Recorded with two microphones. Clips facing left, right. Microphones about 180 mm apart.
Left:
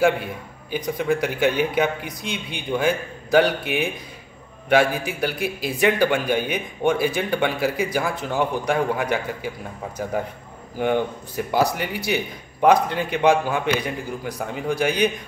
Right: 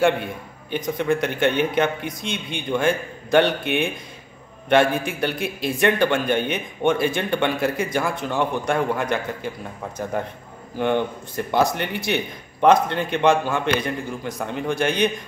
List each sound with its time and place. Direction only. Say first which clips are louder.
0.0 s a man's voice: even; 5° left (ahead or behind)
10.8 s speech: even; 10° left (ahead or behind)